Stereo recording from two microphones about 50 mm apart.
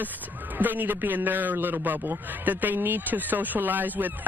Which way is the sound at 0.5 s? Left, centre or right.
Right.